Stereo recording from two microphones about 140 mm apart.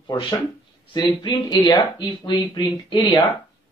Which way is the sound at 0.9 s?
30° left (ahead or behind).